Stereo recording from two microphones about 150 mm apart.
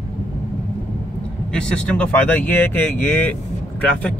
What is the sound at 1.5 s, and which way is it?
A man's voice, 5° left (ahead or behind).